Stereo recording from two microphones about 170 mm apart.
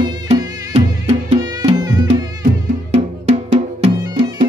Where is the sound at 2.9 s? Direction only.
40° right (ahead or behind).